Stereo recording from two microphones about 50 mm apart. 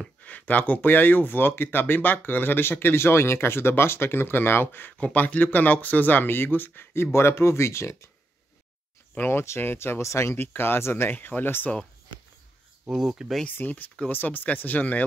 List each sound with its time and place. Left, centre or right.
0.2 s speech: left
4.9 s speech: left
9.3 s speech: left
9.6 s speech: left
10.3 s speech: left
11.1 s speech: left
12.9 s speech: centre
13.5 s speech: left